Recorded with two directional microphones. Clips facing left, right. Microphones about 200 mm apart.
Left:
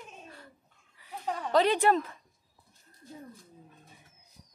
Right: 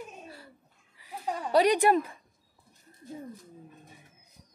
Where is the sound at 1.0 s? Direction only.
10° right (ahead or behind).